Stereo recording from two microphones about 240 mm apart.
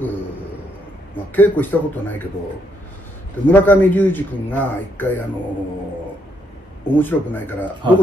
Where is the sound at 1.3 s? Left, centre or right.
Centre.